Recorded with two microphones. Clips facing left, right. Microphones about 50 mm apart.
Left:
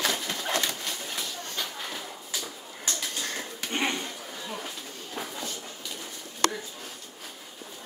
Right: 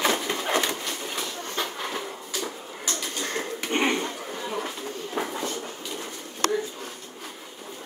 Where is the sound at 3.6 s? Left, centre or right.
Right.